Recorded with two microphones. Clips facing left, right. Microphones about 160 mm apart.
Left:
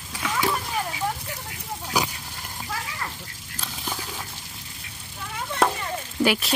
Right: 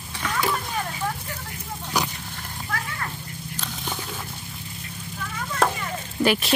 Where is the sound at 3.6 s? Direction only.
5° left (ahead or behind).